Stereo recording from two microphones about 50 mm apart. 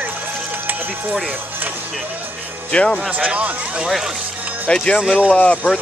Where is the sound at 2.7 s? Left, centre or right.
Centre.